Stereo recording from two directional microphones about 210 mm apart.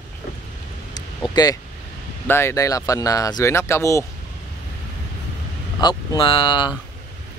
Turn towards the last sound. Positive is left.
turn(degrees=25)  # may be behind; listen again after turning